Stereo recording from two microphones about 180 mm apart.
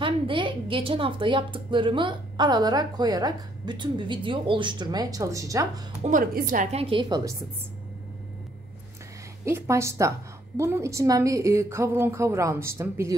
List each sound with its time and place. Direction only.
0.0 s a woman's voice: 30° right (ahead or behind)
6.0 s a woman's voice: 45° right (ahead or behind)
6.8 s a woman's voice: 30° right (ahead or behind)
9.4 s a woman's voice: 15° right (ahead or behind)